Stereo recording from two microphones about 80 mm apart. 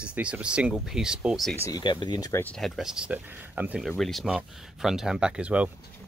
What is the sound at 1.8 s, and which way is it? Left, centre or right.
Speech, left.